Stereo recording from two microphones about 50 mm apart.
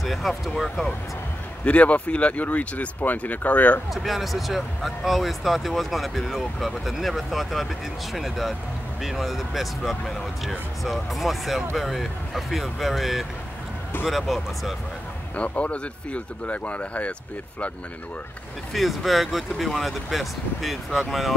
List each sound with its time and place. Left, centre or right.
0.0 s speech: centre
1.6 s speech: left
3.9 s speech: centre
15.3 s speech: left
18.7 s speech: centre